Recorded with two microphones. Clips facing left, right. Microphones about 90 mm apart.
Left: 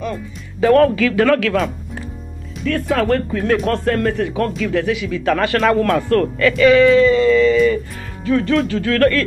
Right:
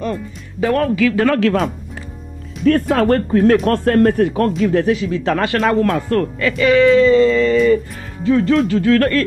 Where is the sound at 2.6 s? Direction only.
45° right (ahead or behind); by 5.6 s 20° right (ahead or behind).